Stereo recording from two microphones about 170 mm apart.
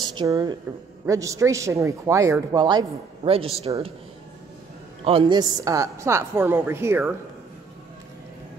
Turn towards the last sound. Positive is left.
turn(degrees=-15)  # may be behind; listen again after turning